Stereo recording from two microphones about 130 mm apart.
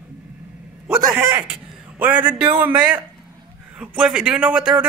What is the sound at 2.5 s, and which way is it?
Speech, 35° right (ahead or behind).